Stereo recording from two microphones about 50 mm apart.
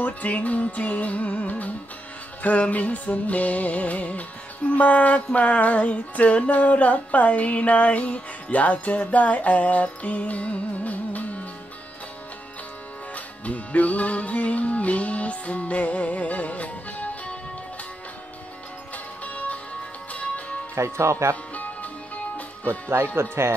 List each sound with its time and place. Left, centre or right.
0.0 s music: left
13.1 s music: left
19.2 s music: left
20.7 s speech: right
23.2 s speech: right